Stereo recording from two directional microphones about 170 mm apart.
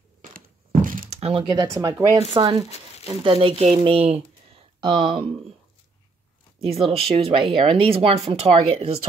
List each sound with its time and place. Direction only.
0.8 s a sound: 55° right (ahead or behind)
1.1 s speech: 35° right (ahead or behind)
1.7 s speech: 20° right (ahead or behind)
3.3 s speech: 35° right (ahead or behind)
6.6 s speech: 35° right (ahead or behind)